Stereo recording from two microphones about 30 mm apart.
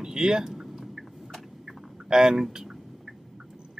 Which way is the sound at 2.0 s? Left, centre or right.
Centre.